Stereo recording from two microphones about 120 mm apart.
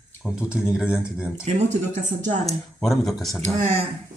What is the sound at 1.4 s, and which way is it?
Speech, 80° right.